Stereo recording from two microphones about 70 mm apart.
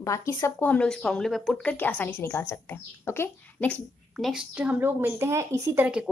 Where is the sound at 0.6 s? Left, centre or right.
Left.